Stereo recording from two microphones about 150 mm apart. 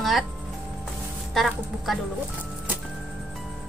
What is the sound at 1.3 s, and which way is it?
Speech, centre (ahead or behind).